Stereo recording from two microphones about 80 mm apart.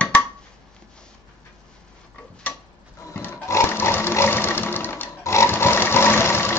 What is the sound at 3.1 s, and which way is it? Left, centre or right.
Sewing machine, left.